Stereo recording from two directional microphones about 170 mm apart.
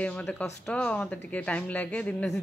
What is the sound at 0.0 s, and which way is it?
A woman's voice, 5° left (ahead or behind).